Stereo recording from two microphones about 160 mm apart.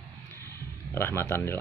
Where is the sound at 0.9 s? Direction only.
15° left (ahead or behind).